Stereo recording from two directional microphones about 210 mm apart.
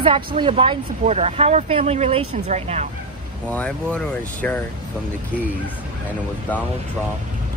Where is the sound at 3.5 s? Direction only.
5° left (ahead or behind).